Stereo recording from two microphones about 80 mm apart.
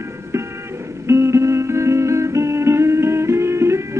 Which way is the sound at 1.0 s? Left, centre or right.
Right.